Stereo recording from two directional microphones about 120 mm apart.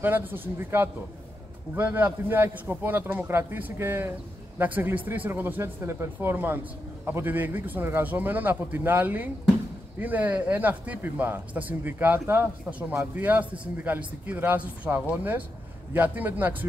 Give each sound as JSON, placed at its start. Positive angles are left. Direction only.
{"t": 0.0, "sound": "speech", "side_deg": -15}